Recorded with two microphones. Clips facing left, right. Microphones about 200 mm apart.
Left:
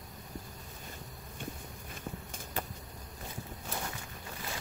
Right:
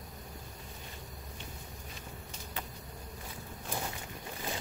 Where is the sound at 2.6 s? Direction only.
45° left (ahead or behind).